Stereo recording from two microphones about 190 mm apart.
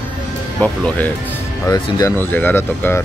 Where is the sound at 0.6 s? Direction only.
5° left (ahead or behind).